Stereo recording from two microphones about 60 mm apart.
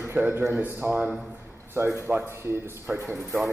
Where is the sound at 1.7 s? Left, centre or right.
Right.